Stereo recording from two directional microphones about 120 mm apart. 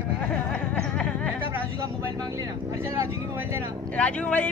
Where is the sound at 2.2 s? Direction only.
30° right (ahead or behind).